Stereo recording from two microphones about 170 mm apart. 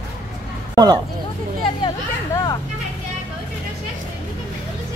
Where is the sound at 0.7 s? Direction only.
25° right (ahead or behind).